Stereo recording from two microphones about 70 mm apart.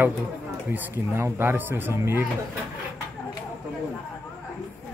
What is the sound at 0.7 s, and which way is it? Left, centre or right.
Speech, right.